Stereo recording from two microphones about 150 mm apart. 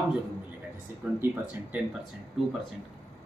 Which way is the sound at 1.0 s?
10° right (ahead or behind).